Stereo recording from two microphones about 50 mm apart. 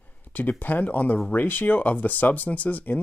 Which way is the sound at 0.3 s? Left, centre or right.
Left.